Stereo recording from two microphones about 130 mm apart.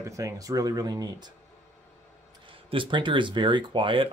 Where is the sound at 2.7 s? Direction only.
40° right (ahead or behind).